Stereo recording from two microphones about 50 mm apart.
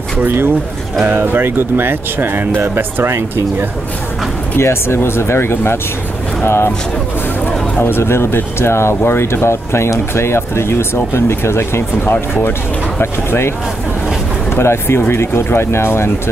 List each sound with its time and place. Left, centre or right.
1.0 s speech: right
4.6 s speech: left
7.8 s speech: left
14.5 s speech: left